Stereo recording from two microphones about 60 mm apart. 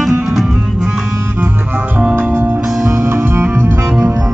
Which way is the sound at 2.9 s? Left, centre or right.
Right.